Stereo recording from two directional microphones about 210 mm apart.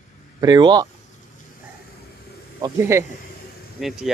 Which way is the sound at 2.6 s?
15° right (ahead or behind).